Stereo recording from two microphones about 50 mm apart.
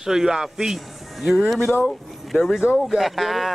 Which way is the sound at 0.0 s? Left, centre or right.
Centre.